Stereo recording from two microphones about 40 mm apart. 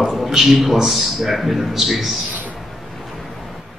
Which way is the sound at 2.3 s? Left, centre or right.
Right.